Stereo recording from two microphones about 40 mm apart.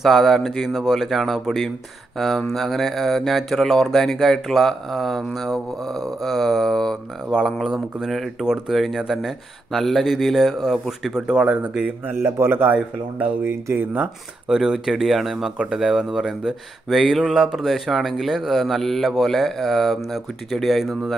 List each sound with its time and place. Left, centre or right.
0.0 s speech: centre
6.6 s speech: centre
7.3 s speech: centre
8.6 s speech: centre
9.7 s speech: centre
12.1 s speech: right
13.4 s speech: right
14.5 s speech: centre
15.5 s speech: centre
17.4 s speech: centre
18.6 s speech: centre